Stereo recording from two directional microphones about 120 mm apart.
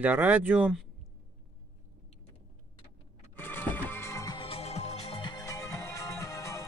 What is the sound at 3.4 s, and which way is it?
Music, 15° left (ahead or behind).